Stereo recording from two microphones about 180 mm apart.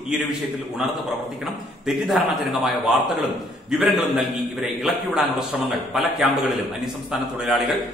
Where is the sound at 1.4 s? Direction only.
Centre (ahead or behind).